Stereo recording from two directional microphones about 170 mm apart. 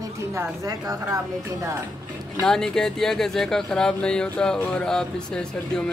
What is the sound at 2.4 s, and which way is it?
Speech, 5° left (ahead or behind).